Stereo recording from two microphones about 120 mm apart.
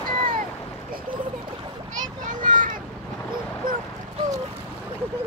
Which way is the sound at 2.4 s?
90° right.